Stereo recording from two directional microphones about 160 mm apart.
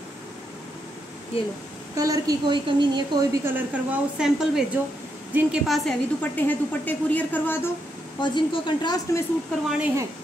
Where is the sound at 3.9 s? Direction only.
5° right (ahead or behind).